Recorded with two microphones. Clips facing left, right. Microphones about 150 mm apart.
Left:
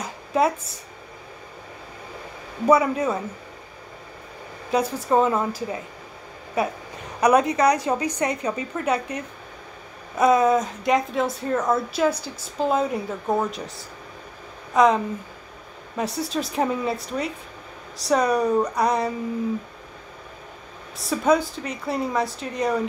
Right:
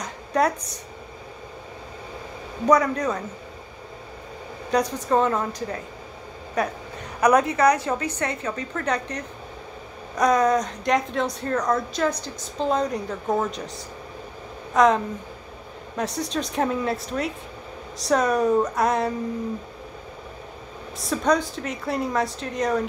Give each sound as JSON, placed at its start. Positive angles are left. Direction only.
{"t": 0.0, "sound": "a sound", "side_deg": 5}
{"t": 2.6, "sound": "a woman's voice", "side_deg": 5}
{"t": 4.6, "sound": "a woman's voice", "side_deg": 5}
{"t": 14.7, "sound": "speech", "side_deg": 0}
{"t": 16.0, "sound": "a woman's voice", "side_deg": 0}
{"t": 21.0, "sound": "a woman's voice", "side_deg": 5}